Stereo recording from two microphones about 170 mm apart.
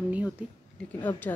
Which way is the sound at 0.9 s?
10° left (ahead or behind).